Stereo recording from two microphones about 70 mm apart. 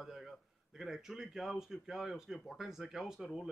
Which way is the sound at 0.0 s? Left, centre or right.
Centre.